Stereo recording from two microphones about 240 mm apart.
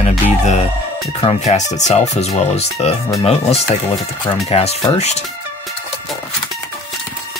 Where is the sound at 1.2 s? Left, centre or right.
Left.